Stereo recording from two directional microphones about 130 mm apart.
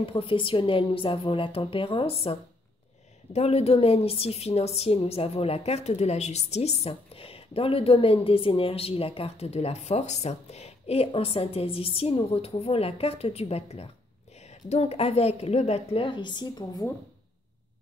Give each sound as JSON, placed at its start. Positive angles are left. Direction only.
{"t": 0.0, "sound": "a woman's voice", "side_deg": 45}
{"t": 3.3, "sound": "a woman's voice", "side_deg": 55}